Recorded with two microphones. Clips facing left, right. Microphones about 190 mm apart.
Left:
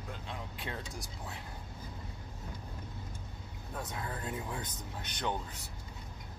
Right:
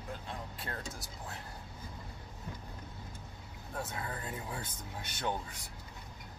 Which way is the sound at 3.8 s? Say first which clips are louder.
Left 2 dB; 5° right (ahead or behind).